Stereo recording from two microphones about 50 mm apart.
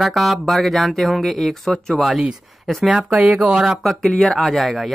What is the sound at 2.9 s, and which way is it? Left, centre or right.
Speech, centre.